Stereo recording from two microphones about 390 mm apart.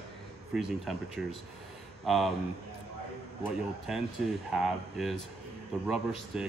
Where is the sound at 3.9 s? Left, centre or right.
Centre.